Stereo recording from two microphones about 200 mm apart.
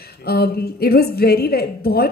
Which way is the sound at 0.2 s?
50° left (ahead or behind).